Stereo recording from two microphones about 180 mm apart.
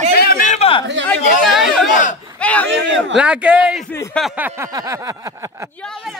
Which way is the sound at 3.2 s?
5° right (ahead or behind).